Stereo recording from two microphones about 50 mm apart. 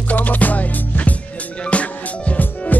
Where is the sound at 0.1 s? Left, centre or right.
Left.